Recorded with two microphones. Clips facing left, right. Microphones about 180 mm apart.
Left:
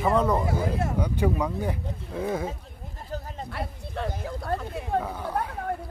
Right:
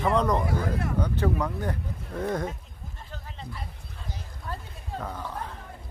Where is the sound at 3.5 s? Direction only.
70° left (ahead or behind).